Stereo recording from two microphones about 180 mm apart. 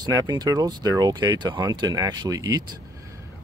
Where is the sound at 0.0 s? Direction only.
20° right (ahead or behind).